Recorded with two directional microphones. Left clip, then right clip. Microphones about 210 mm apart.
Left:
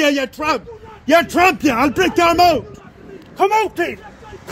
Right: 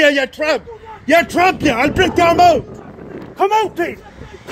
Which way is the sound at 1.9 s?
25° left (ahead or behind).